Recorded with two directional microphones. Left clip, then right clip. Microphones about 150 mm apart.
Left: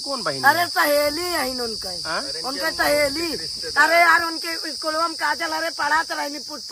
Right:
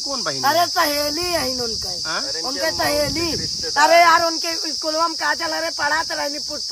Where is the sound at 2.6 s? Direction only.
40° right (ahead or behind).